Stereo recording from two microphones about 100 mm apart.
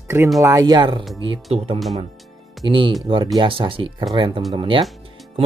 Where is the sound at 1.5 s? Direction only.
75° right (ahead or behind).